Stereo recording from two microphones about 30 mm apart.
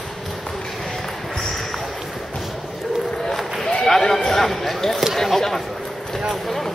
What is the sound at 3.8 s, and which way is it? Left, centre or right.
A man's voice, centre.